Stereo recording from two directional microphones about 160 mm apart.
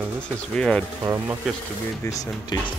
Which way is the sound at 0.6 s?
10° left (ahead or behind).